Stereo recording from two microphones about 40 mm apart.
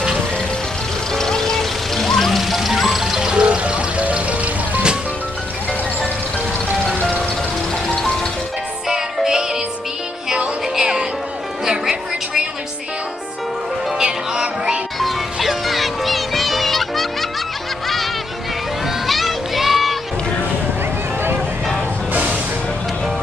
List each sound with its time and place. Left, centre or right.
1.1 s music: centre
3.3 s vehicle: right
7.9 s music: centre
8.8 s music: centre
13.9 s music: centre
15.3 s music: centre
19.0 s children playing: centre
22.1 s music: right